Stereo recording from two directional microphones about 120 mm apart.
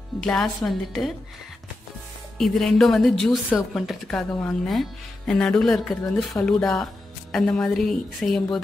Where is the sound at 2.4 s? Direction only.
5° left (ahead or behind).